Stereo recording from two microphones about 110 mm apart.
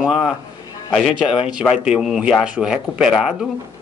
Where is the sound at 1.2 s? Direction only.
5° right (ahead or behind).